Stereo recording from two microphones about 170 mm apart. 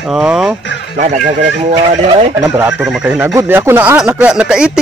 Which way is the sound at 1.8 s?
35° right (ahead or behind).